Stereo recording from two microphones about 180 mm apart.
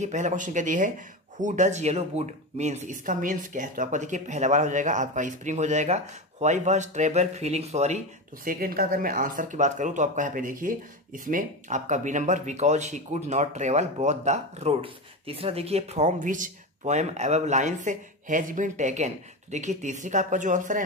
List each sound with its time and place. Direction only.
0.0 s speech: 40° right (ahead or behind)
8.5 s speech: 55° right (ahead or behind)